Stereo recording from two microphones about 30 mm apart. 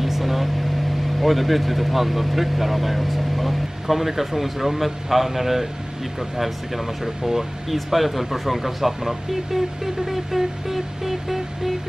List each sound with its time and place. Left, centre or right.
0.0 s vehicle: centre
1.2 s speech: centre